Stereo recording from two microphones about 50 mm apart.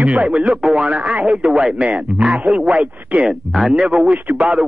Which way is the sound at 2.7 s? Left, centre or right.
Right.